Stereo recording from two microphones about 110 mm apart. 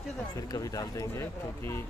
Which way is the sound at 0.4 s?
30° left (ahead or behind).